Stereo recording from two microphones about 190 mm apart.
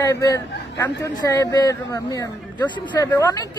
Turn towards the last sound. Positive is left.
turn(degrees=20)  # may be behind; listen again after turning